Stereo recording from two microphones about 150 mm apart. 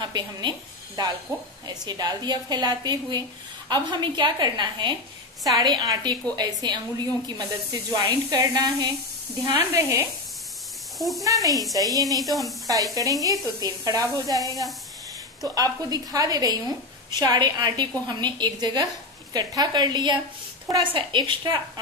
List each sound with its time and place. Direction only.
0.0 s a woman's voice: 30° right (ahead or behind)
7.9 s speech: 25° right (ahead or behind)
11.0 s speech: centre (ahead or behind)
11.2 s speech: 20° right (ahead or behind)
12.3 s speech: centre (ahead or behind)
12.6 s a woman's voice: 25° right (ahead or behind)